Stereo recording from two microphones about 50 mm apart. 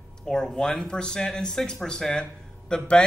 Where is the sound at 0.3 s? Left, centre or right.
Centre.